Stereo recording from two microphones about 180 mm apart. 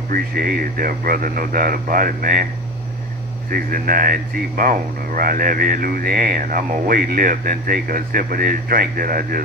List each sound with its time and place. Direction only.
0.1 s speech: 55° right (ahead or behind)
3.4 s speech: 50° right (ahead or behind)